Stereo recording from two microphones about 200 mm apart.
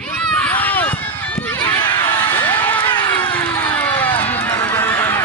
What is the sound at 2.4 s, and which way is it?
Crowd, 10° left (ahead or behind).